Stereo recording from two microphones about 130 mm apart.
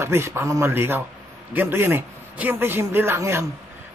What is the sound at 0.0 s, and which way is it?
A man's voice, 20° right (ahead or behind).